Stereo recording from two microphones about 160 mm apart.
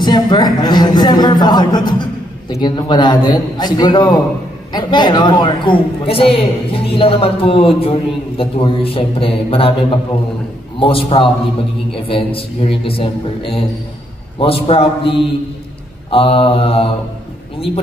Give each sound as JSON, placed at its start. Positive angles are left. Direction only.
{"t": 0.0, "sound": "a man's voice", "side_deg": 25}
{"t": 10.8, "sound": "a man's voice", "side_deg": 35}